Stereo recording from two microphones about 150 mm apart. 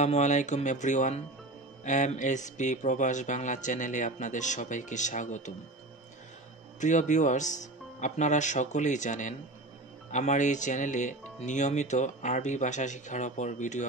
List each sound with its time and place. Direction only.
0.0 s speech: 50° left (ahead or behind)
6.8 s speech: 55° left (ahead or behind)